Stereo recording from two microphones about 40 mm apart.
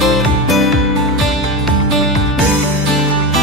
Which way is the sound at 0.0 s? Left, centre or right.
Centre.